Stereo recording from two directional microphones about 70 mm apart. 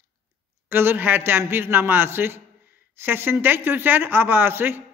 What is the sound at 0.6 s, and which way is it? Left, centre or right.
Speech, right.